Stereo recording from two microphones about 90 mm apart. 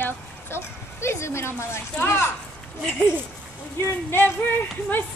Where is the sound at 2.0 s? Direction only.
25° left (ahead or behind).